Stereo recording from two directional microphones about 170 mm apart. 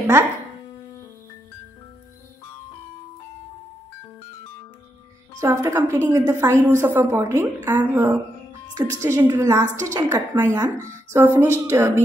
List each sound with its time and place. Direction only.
5.4 s a woman's voice: 15° right (ahead or behind)